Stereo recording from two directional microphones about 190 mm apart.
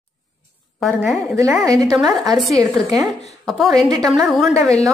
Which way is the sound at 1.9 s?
Centre (ahead or behind).